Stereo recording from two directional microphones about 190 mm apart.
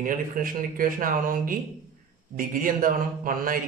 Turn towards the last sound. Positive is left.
turn(degrees=-45)  # may be behind; listen again after turning